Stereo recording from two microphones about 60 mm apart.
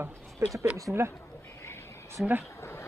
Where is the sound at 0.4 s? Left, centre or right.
Right.